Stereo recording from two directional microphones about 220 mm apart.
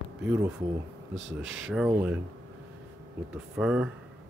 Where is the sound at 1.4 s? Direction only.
60° right (ahead or behind).